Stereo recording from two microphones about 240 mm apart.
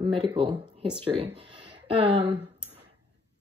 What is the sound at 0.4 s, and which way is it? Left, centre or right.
Speech, right.